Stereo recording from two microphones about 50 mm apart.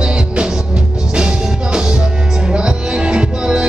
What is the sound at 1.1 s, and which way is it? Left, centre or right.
Music, centre.